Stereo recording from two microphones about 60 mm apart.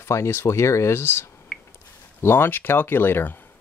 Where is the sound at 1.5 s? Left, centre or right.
Centre.